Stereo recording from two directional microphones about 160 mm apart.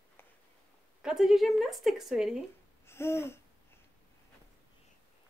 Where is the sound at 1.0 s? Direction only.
5° right (ahead or behind).